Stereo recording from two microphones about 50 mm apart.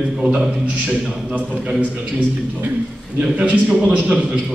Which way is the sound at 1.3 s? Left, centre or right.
Right.